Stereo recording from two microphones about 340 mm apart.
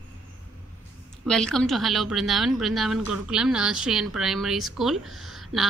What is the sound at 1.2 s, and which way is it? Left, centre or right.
A woman's voice, centre.